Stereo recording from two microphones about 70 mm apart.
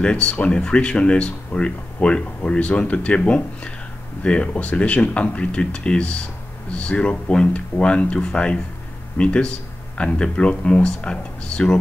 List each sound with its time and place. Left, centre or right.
0.0 s speech: centre